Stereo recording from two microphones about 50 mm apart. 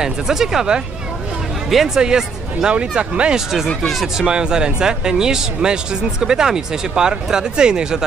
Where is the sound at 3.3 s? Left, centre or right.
Centre.